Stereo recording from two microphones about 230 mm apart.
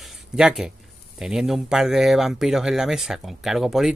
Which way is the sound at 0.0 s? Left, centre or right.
Centre.